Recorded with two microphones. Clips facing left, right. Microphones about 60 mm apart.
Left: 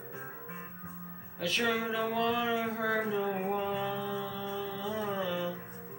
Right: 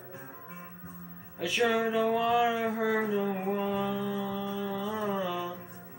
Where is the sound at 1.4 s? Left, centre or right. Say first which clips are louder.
Right 4 dB; centre.